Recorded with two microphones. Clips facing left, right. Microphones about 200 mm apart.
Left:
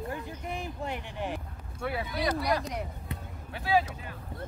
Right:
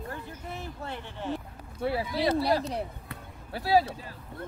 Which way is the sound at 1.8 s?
30° right (ahead or behind).